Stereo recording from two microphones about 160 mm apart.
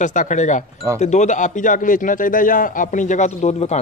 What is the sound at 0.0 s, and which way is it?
Speech, 50° left (ahead or behind).